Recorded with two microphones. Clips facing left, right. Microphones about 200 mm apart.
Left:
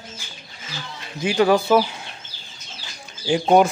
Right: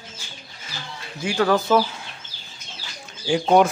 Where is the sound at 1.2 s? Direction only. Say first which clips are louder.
Left 3 dB; 20° left (ahead or behind).